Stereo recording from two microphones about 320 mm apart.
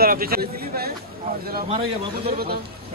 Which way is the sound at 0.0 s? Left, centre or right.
Right.